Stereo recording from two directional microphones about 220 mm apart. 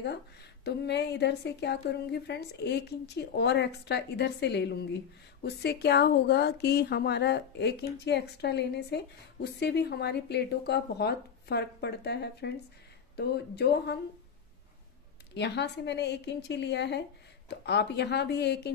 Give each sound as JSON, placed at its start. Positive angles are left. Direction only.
{"t": 0.7, "sound": "speech", "side_deg": 50}
{"t": 15.3, "sound": "speech", "side_deg": 50}